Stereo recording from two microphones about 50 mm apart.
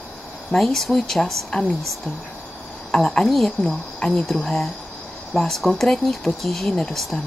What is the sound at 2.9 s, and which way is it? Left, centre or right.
Speech, centre.